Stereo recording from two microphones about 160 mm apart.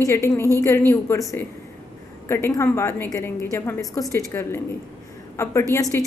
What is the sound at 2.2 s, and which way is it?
A woman's voice, 15° left (ahead or behind).